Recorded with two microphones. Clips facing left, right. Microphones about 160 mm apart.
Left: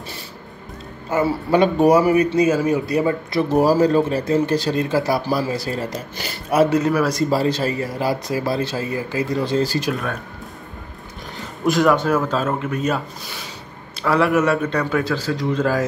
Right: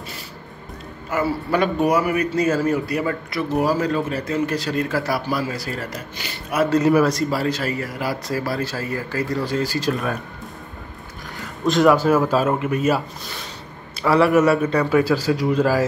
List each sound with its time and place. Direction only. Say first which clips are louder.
1.1 s speech: left 3 dB; 25° left (ahead or behind)
2.3 s speech: left 2 dB; 15° left (ahead or behind)
3.5 s speech: left 5 dB; 35° left (ahead or behind)
6.1 s a sound: left 5 dB; 35° left (ahead or behind)
6.8 s a man's voice: right 3 dB; 5° right (ahead or behind)
7.3 s speech: left 3 dB; 30° left (ahead or behind)
11.6 s a man's voice: right 1 dB; 5° left (ahead or behind)
14.0 s a man's voice: right 2 dB; centre (ahead or behind)